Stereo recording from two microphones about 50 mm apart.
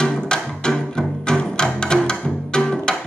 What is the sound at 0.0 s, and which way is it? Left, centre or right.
Music, centre.